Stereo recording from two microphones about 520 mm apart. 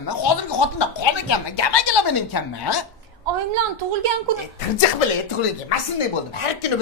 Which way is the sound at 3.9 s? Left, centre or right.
Right.